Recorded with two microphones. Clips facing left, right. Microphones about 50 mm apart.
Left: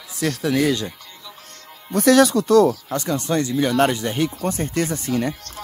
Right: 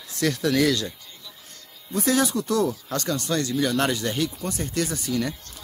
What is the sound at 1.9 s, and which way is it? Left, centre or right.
Speech, left.